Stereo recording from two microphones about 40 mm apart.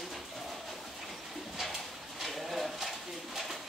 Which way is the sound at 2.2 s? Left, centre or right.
Centre.